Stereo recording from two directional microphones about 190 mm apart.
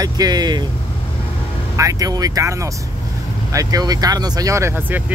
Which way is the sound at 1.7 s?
15° right (ahead or behind).